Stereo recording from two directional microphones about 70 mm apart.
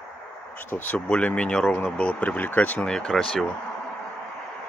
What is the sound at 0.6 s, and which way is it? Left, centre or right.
Speech, left.